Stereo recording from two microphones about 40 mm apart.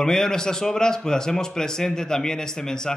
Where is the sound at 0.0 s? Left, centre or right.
Centre.